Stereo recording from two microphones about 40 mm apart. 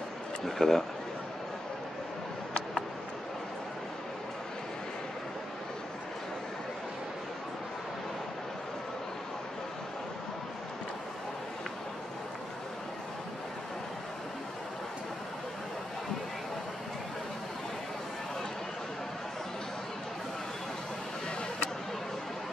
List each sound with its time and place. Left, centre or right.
0.5 s speech: centre